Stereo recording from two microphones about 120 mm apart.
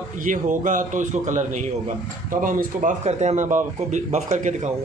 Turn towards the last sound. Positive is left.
turn(degrees=-85)